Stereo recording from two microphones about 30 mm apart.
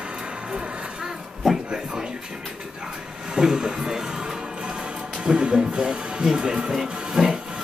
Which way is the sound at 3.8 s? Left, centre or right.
Centre.